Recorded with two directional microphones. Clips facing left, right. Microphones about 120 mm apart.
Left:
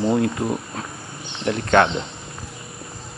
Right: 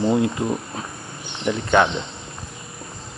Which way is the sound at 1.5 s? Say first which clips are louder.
Left 1 dB; 10° right (ahead or behind).